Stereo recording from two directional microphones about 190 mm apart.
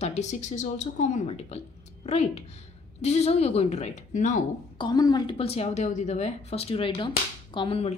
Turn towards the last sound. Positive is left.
turn(degrees=30)  # may be behind; listen again after turning